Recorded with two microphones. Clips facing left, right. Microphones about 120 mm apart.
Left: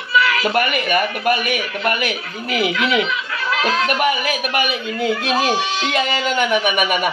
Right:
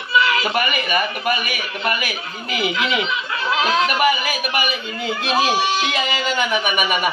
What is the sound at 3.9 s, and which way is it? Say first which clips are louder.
Speech: even; 5° right (ahead or behind).